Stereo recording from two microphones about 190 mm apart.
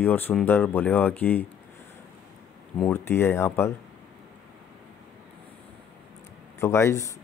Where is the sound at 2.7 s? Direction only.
10° left (ahead or behind).